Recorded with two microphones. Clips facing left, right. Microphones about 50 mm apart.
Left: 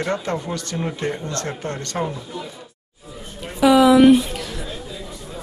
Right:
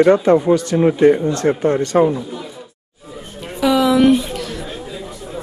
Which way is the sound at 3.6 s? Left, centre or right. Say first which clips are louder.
Left 1 dB; centre.